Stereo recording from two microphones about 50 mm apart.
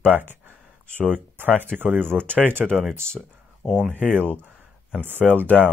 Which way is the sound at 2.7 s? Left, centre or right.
Centre.